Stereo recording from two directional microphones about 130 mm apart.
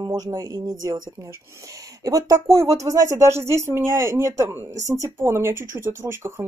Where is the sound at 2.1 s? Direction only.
25° right (ahead or behind).